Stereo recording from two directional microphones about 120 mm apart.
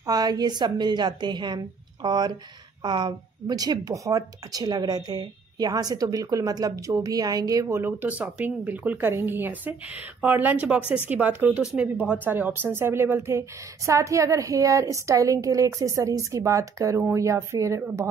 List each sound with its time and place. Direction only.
0.0 s a woman's voice: 30° right (ahead or behind)